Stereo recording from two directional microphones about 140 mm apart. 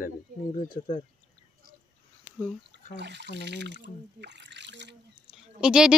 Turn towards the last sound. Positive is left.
turn(degrees=-5)  # may be behind; listen again after turning